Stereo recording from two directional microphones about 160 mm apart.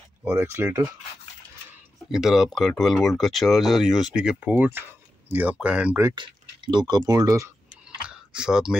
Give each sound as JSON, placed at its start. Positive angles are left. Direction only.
{"t": 0.2, "sound": "speech", "side_deg": -15}
{"t": 2.0, "sound": "speech", "side_deg": 0}
{"t": 6.1, "sound": "speech", "side_deg": -30}
{"t": 8.1, "sound": "a sound", "side_deg": -5}